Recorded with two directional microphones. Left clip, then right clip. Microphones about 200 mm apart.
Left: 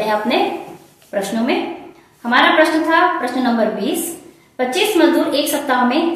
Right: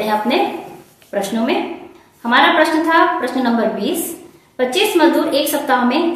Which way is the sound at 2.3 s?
15° right (ahead or behind).